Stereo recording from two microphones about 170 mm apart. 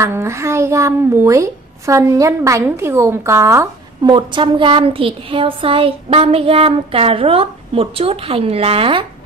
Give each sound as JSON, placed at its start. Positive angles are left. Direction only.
{"t": 0.0, "sound": "a child's voice", "side_deg": -15}
{"t": 4.1, "sound": "speech", "side_deg": -30}